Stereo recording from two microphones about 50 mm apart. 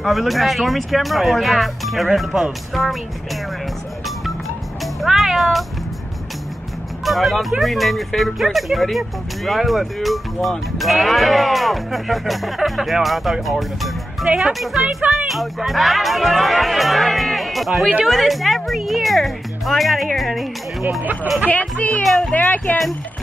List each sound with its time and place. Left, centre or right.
0.0 s speech: centre
5.0 s cat: centre
7.1 s speech: centre
14.2 s speech: centre
14.5 s speech: centre
21.0 s speech: right
21.5 s speech: left